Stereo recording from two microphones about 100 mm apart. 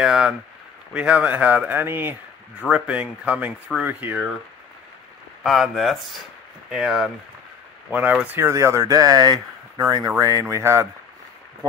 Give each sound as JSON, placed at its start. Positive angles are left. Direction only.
{"t": 0.0, "sound": "speech", "side_deg": -5}
{"t": 5.4, "sound": "speech", "side_deg": 0}
{"t": 7.9, "sound": "speech", "side_deg": -15}